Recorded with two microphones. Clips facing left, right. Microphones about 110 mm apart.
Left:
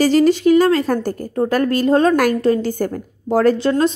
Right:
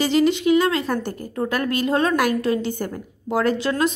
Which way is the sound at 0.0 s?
40° left (ahead or behind).